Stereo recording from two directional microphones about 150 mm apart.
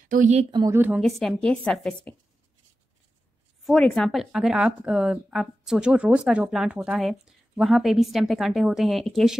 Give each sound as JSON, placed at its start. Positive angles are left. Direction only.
{"t": 0.1, "sound": "speech", "side_deg": -55}
{"t": 0.5, "sound": "speech", "side_deg": -30}
{"t": 0.7, "sound": "a woman's voice", "side_deg": -10}
{"t": 1.0, "sound": "speech", "side_deg": 0}
{"t": 3.6, "sound": "speech", "side_deg": 5}